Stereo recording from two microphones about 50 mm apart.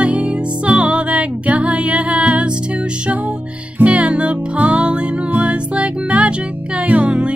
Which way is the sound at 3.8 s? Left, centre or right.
Right.